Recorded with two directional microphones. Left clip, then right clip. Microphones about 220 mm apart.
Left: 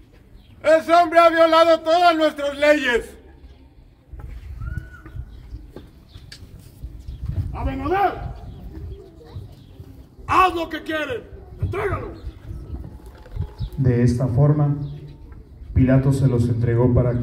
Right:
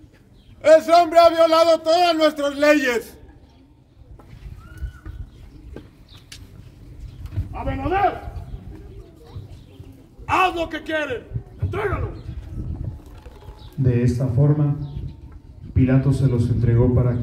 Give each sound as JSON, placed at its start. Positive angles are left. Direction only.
{"t": 0.6, "sound": "a man's voice", "side_deg": -45}
{"t": 7.5, "sound": "speech", "side_deg": 45}
{"t": 10.2, "sound": "a man's voice", "side_deg": 45}
{"t": 13.8, "sound": "a man's voice", "side_deg": 35}
{"t": 15.7, "sound": "a man's voice", "side_deg": 40}